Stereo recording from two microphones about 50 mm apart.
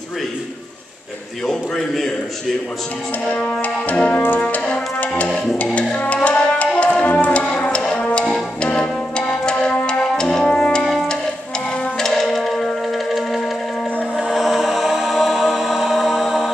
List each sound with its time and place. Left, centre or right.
1.4 s a man's voice: centre
3.3 s music: left
10.9 s music: centre